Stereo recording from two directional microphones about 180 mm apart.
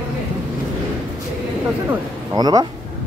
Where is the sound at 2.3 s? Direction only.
20° right (ahead or behind).